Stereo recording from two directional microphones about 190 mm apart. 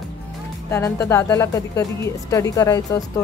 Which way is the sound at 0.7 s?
15° left (ahead or behind).